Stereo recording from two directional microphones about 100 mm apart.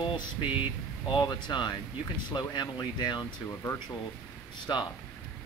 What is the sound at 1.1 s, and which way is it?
Speech, 50° left (ahead or behind).